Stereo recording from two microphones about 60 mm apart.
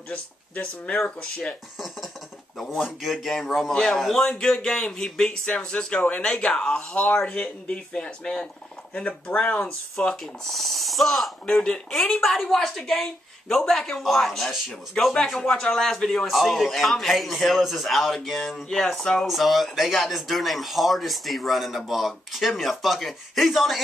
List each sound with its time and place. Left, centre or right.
0.1 s speech: left
2.8 s speech: centre
3.7 s speech: centre
15.4 s speech: centre